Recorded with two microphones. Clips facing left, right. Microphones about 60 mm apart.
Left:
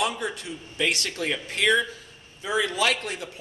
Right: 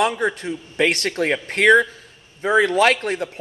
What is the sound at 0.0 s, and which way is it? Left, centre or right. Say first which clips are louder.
A man's voice: right 8 dB; right.